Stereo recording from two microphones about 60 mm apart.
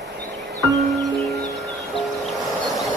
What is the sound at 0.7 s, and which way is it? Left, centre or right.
Music, centre.